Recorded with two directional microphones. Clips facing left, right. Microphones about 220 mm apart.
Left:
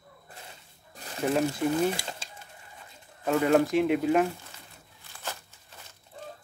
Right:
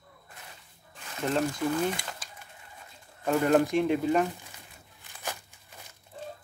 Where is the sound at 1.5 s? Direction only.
25° left (ahead or behind).